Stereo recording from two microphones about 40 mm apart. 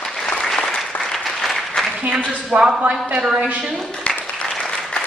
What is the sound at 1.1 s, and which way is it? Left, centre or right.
Applause, centre.